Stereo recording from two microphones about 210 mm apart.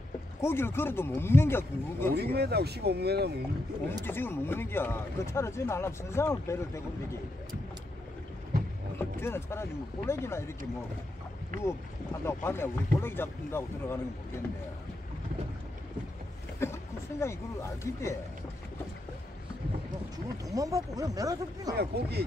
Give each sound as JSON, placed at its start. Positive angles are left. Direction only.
{"t": 0.4, "sound": "speech", "side_deg": 10}
{"t": 2.3, "sound": "speech", "side_deg": -50}
{"t": 4.0, "sound": "speech", "side_deg": 10}
{"t": 8.9, "sound": "speech", "side_deg": 10}
{"t": 11.6, "sound": "speech", "side_deg": 10}
{"t": 16.5, "sound": "speech", "side_deg": 10}
{"t": 20.4, "sound": "speech", "side_deg": -15}
{"t": 21.7, "sound": "speech", "side_deg": -50}